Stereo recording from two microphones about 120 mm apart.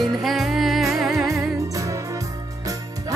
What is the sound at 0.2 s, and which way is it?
Music, centre (ahead or behind).